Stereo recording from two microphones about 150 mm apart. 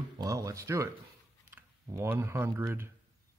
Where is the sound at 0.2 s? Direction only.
25° right (ahead or behind).